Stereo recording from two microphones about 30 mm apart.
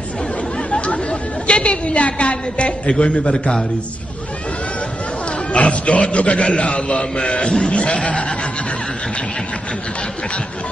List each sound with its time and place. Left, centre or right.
0.7 s chatter: left
1.5 s a sound: left
1.9 s a man's voice: left
5.5 s a man's voice: left
7.7 s a man's voice: left